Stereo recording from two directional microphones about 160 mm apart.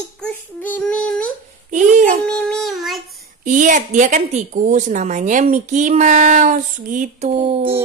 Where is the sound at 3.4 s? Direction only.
55° right (ahead or behind).